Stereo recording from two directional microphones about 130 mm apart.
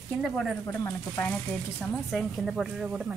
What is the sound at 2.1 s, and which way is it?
Speech, centre (ahead or behind).